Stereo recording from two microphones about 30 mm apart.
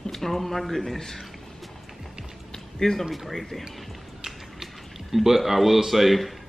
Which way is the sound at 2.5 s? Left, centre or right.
Centre.